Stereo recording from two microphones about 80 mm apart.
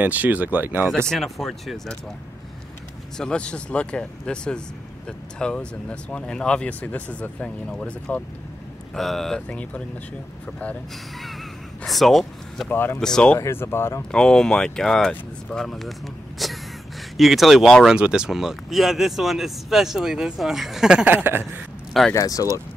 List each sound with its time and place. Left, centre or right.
0.0 s speech: right
1.0 s speech: centre
3.2 s speech: centre
8.9 s speech: centre
11.8 s speech: centre
12.6 s speech: left
13.0 s speech: centre
13.4 s speech: left
14.1 s speech: centre
16.4 s gasp: centre
17.2 s speech: centre
21.0 s speech: right
22.1 s speech: left